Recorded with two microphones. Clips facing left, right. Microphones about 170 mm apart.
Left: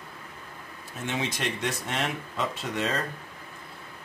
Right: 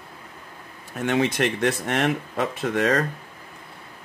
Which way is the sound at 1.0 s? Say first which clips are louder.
Right 9 dB; 65° right (ahead or behind).